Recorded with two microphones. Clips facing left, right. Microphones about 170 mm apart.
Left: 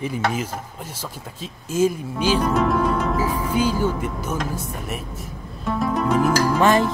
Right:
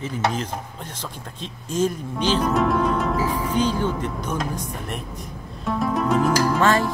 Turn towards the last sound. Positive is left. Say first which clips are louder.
# left 2 dB
turn(degrees=15)  # may be behind; listen again after turning